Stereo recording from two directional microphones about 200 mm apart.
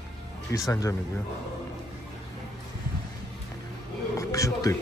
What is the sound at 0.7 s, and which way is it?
Speech, 15° left (ahead or behind).